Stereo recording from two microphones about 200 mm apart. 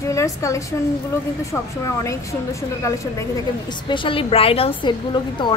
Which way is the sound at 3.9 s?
25° left (ahead or behind).